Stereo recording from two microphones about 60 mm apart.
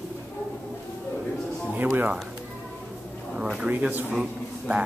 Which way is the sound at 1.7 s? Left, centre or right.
Right.